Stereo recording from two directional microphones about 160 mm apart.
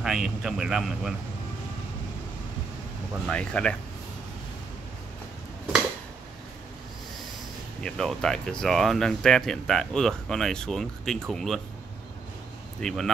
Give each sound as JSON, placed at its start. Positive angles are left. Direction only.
{"t": 0.0, "sound": "speech", "side_deg": -5}
{"t": 3.3, "sound": "speech", "side_deg": 5}
{"t": 7.8, "sound": "speech", "side_deg": 5}
{"t": 12.8, "sound": "speech", "side_deg": 0}